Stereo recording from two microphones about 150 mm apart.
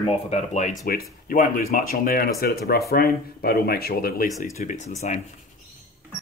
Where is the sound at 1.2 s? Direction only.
65° left (ahead or behind); by 4.3 s 80° left.